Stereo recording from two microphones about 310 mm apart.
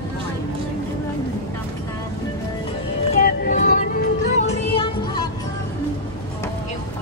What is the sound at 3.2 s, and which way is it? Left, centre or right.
Music, left.